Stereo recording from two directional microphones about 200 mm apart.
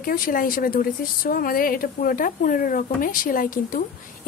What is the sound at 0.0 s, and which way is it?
Speech, 45° left (ahead or behind).